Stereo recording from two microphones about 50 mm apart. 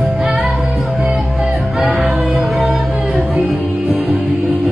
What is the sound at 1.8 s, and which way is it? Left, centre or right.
Music, centre.